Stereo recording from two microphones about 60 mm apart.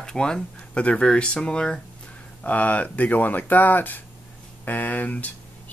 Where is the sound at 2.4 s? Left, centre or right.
Left.